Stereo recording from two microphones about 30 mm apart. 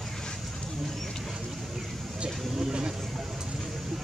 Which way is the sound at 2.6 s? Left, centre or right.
Right.